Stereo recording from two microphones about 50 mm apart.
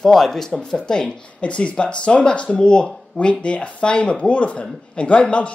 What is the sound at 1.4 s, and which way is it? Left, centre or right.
Speech, left.